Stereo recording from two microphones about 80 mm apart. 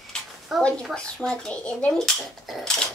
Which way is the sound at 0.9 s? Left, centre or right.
Centre.